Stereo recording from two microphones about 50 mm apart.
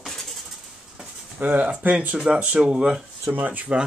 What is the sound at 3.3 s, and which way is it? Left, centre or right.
Speech, right.